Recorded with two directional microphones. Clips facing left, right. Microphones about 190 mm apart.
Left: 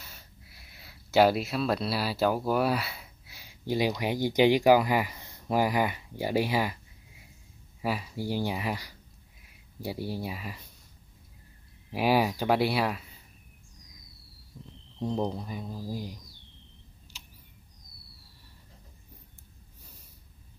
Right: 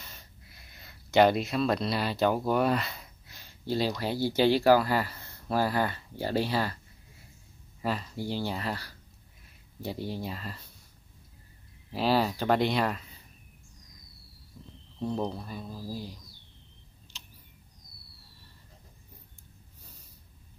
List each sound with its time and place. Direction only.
0.0 s speech: 5° left (ahead or behind)
7.8 s speech: 10° left (ahead or behind)
11.9 s speech: 10° left (ahead or behind)
15.0 s speech: 15° left (ahead or behind)
17.1 s a sound: 10° left (ahead or behind)